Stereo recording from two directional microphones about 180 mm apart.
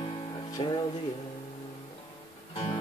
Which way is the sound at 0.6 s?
30° left (ahead or behind).